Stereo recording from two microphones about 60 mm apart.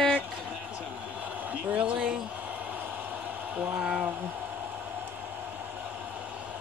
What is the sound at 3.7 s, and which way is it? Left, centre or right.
Speech, centre.